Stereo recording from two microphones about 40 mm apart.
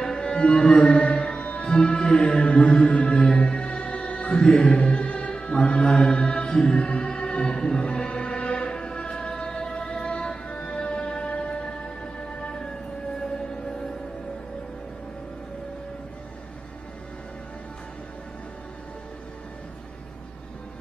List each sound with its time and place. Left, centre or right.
0.0 s music: centre